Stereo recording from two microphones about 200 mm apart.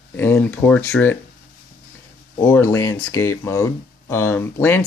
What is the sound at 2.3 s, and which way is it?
Speech, 15° left (ahead or behind).